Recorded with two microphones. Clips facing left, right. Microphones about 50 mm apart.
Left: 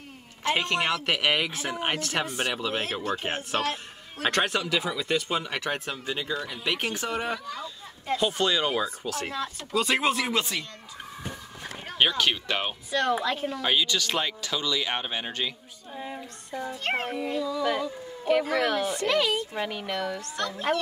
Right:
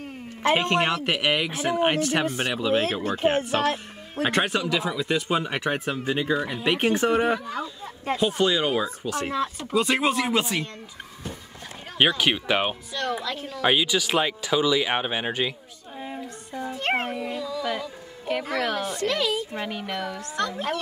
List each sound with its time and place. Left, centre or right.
0.4 s speech: right
8.2 s speech: centre
9.3 s speech: right
9.8 s speech: centre
12.0 s speech: centre
12.9 s speech: centre
13.6 s speech: centre
15.9 s a sound: centre
16.7 s speech: right
17.1 s speech: centre
17.4 s speech: centre